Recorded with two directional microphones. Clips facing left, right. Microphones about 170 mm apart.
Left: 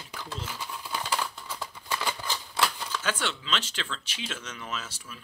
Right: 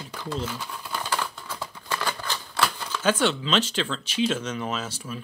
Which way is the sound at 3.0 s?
30° right (ahead or behind).